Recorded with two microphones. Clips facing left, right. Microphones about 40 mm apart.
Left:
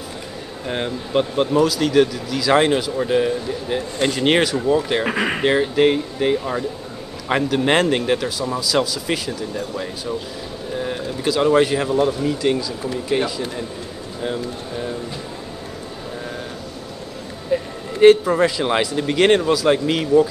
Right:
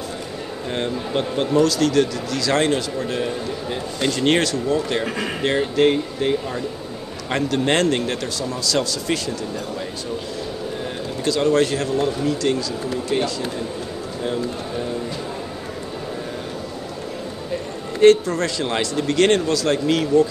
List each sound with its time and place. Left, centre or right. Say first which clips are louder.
0.7 s speech: even; centre
5.0 s speech: left 4 dB; left
5.4 s speech: left 1 dB; centre
10.9 s speech: left 1 dB; centre
17.5 s music: left 7 dB; centre
18.0 s speech: left 2 dB; centre